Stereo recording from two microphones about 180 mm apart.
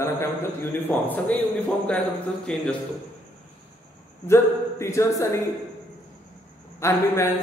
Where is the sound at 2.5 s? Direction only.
5° left (ahead or behind).